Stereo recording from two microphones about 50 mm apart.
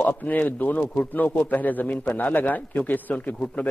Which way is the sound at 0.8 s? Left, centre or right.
Left.